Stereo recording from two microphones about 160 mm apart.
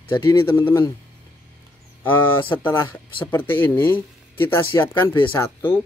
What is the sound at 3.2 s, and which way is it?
Speech, 10° left (ahead or behind).